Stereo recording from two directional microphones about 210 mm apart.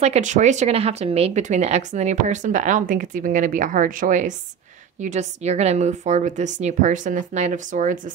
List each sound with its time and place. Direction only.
0.0 s speech: 35° right (ahead or behind)